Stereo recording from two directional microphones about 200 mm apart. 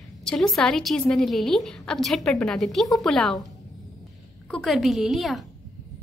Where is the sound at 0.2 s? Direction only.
5° left (ahead or behind).